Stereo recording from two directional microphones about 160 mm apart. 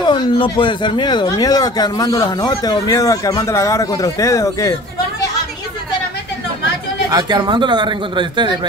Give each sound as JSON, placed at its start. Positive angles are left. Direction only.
{"t": 0.0, "sound": "speech", "side_deg": 30}
{"t": 7.1, "sound": "speech", "side_deg": -25}